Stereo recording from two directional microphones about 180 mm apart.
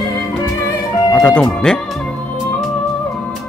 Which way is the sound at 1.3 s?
5° left (ahead or behind).